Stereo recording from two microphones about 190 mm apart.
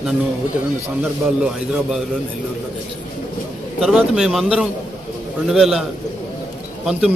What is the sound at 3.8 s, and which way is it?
A man's voice, centre (ahead or behind).